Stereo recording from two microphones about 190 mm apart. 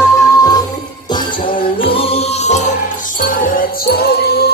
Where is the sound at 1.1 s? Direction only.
25° left (ahead or behind).